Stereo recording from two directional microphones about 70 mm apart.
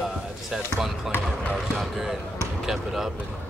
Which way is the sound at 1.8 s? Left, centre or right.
Centre.